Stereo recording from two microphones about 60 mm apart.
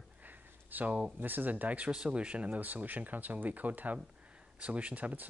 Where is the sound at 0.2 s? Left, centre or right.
Right.